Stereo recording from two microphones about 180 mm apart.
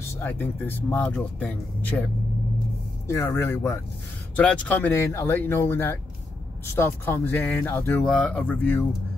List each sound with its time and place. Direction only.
0.1 s speech: 10° left (ahead or behind)
3.1 s speech: 15° left (ahead or behind)